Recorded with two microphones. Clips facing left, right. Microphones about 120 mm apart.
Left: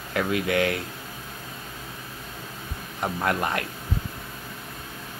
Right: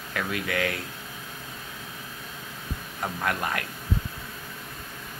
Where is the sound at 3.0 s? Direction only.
25° left (ahead or behind).